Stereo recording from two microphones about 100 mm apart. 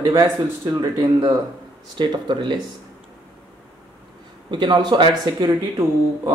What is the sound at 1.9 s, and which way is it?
Speech, 50° right (ahead or behind).